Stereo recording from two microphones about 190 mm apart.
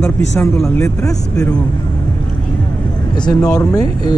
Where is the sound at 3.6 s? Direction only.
20° left (ahead or behind).